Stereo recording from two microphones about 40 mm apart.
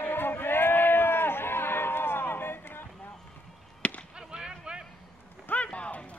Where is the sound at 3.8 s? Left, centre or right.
Left.